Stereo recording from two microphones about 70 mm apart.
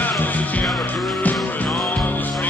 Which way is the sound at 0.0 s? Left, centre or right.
Left.